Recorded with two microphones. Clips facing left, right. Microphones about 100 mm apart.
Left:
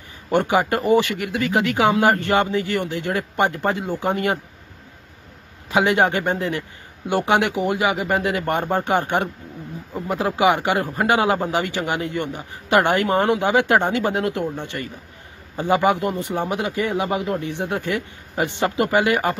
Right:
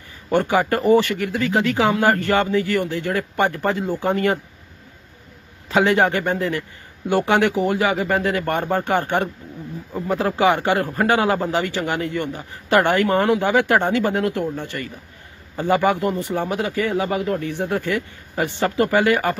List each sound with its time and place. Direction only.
0.3 s speech: 20° left (ahead or behind)
5.7 s speech: 15° left (ahead or behind)